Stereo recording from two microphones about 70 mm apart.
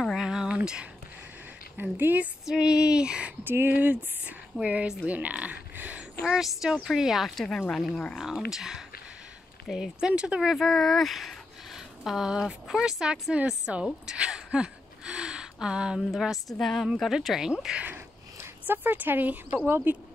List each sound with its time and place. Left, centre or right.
0.2 s a sound: centre
1.8 s speech: right
2.4 s speech: centre
3.4 s speech: right
6.3 s a woman's voice: centre
7.9 s speech: centre
8.2 s speech: centre
10.6 s speech: centre
14.0 s a sound: centre
16.1 s a woman's voice: centre
17.8 s speech: right